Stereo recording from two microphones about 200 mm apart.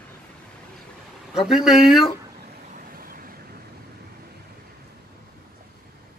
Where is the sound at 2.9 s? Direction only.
45° right (ahead or behind).